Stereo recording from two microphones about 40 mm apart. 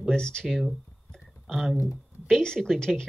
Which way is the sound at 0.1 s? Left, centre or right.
Centre.